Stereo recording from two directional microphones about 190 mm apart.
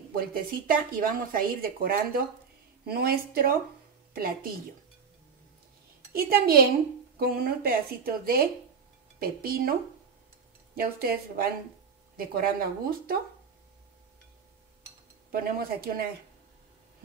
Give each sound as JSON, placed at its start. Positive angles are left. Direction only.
{"t": 0.1, "sound": "a woman's voice", "side_deg": -50}
{"t": 6.1, "sound": "speech", "side_deg": -55}
{"t": 10.8, "sound": "speech", "side_deg": -50}
{"t": 15.3, "sound": "speech", "side_deg": -50}